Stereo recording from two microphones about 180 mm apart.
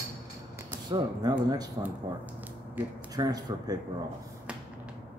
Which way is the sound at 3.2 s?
20° right (ahead or behind).